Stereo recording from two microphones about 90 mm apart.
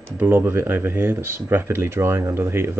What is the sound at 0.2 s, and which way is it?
Speech, 25° right (ahead or behind).